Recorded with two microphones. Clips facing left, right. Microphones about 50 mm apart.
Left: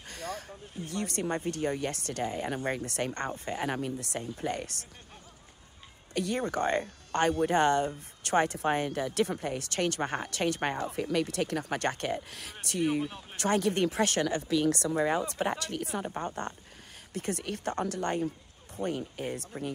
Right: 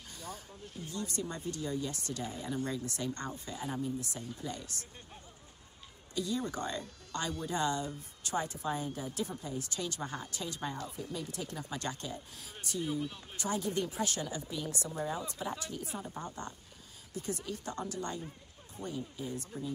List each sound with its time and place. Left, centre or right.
0.1 s a sound: left
0.8 s speech: left
3.6 s speech: left
6.1 s speech: left
13.0 s speech: left
13.4 s speech: left